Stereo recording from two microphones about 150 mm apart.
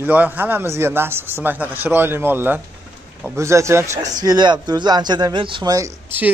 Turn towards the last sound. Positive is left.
turn(degrees=-20)  # may be behind; listen again after turning